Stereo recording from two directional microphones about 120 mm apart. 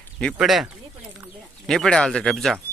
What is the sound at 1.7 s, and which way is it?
Speech, 5° left (ahead or behind).